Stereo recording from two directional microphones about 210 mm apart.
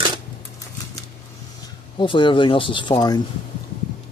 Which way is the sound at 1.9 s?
25° left (ahead or behind).